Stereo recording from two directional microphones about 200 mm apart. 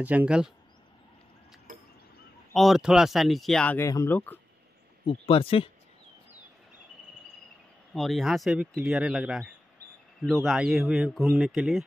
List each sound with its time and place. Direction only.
0.0 s speech: 5° right (ahead or behind)
2.5 s speech: centre (ahead or behind)
5.0 s speech: 30° left (ahead or behind)
7.9 s speech: centre (ahead or behind)